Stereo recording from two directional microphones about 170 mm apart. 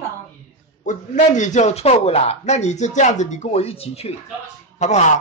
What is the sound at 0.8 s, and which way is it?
A man's voice, 45° left (ahead or behind).